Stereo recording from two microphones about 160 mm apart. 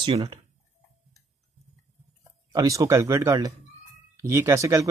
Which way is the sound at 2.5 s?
20° right (ahead or behind).